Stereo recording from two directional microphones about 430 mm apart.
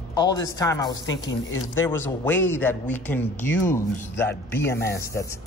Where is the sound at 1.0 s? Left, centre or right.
Left.